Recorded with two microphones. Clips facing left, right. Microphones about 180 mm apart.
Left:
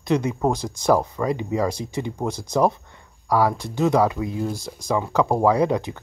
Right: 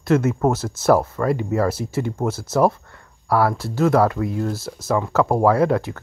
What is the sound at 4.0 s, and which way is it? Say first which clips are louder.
Speech: right 2 dB; 15° left (ahead or behind).